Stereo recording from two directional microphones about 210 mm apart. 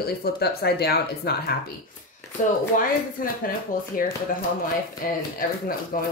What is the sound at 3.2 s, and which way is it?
Speech, 40° left (ahead or behind).